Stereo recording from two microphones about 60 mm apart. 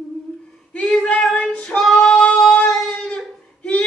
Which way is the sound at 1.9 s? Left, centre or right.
Centre.